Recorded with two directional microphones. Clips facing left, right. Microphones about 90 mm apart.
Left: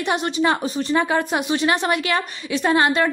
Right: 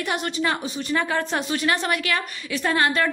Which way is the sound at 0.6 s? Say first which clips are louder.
Left 6 dB; 40° left (ahead or behind).